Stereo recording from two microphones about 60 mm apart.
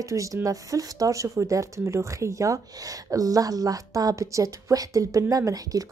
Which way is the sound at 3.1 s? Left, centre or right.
Right.